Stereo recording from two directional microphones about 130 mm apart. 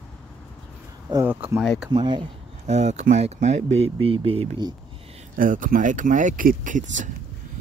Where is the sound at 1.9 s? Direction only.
40° right (ahead or behind).